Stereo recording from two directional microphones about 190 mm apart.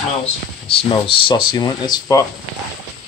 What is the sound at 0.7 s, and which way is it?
Speech, 30° left (ahead or behind).